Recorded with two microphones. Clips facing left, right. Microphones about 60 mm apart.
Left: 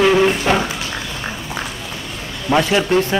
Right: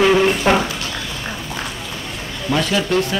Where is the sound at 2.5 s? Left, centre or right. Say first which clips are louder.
Left 3 dB; left.